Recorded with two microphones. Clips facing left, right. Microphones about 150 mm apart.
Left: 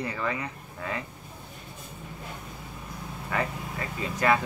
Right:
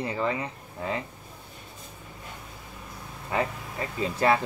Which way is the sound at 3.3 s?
25° right (ahead or behind).